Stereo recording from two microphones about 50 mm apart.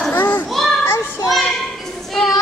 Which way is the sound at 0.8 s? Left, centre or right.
Left.